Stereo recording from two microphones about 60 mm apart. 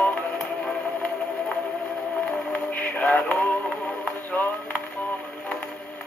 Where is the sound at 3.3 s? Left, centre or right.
Left.